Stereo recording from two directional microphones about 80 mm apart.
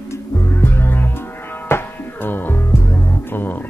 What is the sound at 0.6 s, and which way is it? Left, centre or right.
Music, left.